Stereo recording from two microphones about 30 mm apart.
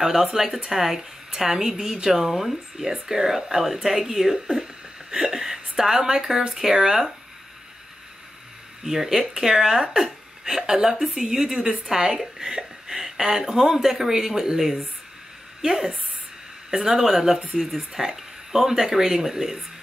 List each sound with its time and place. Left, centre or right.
0.0 s speech: centre
8.8 s speech: centre
15.6 s speech: centre